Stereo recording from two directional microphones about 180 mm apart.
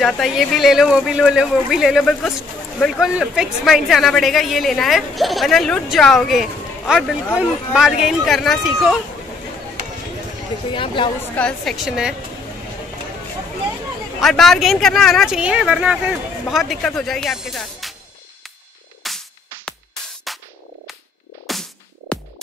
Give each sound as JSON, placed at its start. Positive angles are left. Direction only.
{"t": 0.0, "sound": "a woman's voice", "side_deg": 0}
{"t": 10.7, "sound": "speech", "side_deg": 30}
{"t": 11.3, "sound": "a woman's voice", "side_deg": 5}
{"t": 14.2, "sound": "a woman's voice", "side_deg": 0}
{"t": 19.0, "sound": "music", "side_deg": 5}
{"t": 21.5, "sound": "music", "side_deg": 0}